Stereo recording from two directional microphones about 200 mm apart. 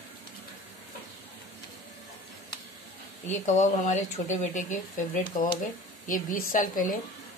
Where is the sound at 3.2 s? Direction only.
35° left (ahead or behind).